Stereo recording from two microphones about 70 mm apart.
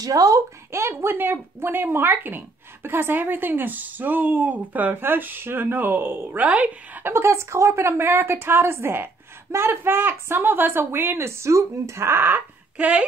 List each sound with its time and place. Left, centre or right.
0.0 s speech: right
0.7 s speech: right
6.4 s a woman's voice: centre
12.7 s speech: centre